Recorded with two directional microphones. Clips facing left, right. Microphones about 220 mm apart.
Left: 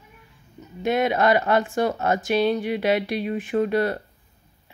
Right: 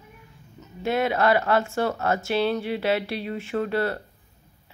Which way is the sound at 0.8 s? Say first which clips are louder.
Left 2 dB; 20° left (ahead or behind).